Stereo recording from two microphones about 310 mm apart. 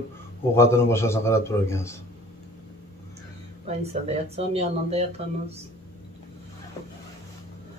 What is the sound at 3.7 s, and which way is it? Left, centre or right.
Speech, centre.